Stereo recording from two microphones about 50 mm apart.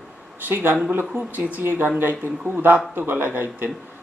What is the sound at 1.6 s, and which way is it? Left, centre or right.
Speech, right.